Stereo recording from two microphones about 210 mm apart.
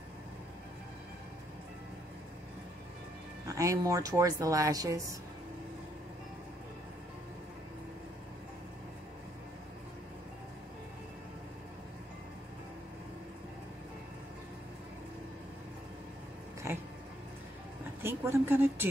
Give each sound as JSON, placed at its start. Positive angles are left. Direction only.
{"t": 3.4, "sound": "speech", "side_deg": -15}
{"t": 16.7, "sound": "dog", "side_deg": -10}
{"t": 18.0, "sound": "a sound", "side_deg": -10}